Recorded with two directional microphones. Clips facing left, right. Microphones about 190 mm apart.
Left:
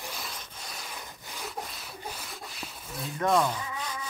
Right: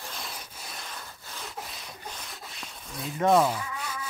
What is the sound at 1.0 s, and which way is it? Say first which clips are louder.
Wood: left 1 dB; 15° left (ahead or behind).